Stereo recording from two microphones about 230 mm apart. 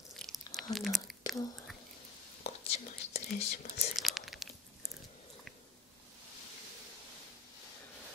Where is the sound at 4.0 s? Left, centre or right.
Centre.